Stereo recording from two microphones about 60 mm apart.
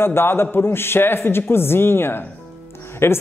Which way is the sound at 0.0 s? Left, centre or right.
Left.